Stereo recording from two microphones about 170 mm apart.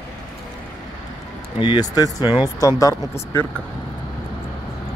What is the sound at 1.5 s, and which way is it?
Speech, 25° left (ahead or behind).